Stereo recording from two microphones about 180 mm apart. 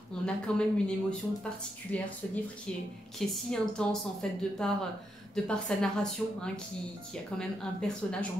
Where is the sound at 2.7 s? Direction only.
5° left (ahead or behind).